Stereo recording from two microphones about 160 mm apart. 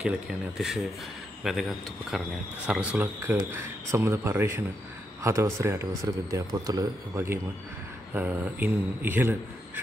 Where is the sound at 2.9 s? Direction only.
15° right (ahead or behind).